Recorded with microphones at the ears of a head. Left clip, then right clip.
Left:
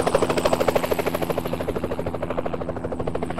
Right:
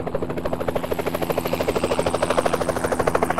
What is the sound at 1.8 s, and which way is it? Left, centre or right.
Helicopter, right.